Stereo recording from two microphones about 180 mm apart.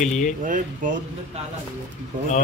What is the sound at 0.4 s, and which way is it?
Speech, 45° right (ahead or behind).